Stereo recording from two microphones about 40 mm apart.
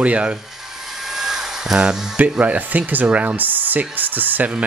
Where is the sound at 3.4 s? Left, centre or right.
Right.